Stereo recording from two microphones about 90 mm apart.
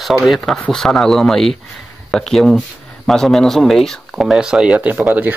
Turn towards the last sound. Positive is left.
turn(degrees=-20)  # may be behind; listen again after turning